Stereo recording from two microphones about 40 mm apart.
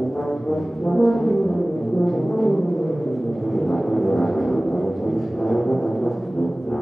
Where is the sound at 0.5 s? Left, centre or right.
Centre.